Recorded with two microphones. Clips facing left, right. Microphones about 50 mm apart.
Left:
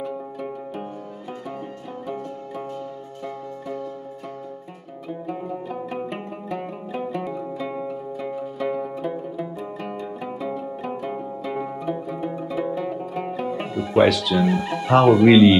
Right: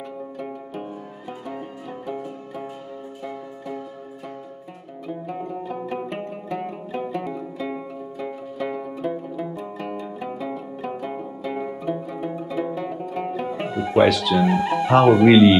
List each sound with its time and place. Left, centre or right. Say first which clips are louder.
0.0 s music: left 3 dB; centre
2.1 s music: left 1 dB; centre
5.0 s music: even; centre
13.9 s speech: even; centre
14.5 s speech: right 1 dB; centre